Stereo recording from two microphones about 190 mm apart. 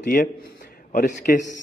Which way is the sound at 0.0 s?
50° left (ahead or behind).